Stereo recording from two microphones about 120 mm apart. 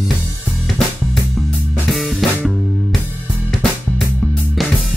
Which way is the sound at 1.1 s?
Centre (ahead or behind).